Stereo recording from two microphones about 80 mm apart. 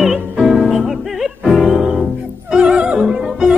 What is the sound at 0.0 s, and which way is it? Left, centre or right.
Music, centre.